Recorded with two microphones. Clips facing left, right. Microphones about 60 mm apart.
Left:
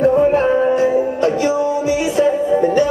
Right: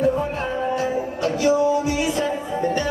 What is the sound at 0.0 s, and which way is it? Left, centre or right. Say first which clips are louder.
Music: left 9 dB; left.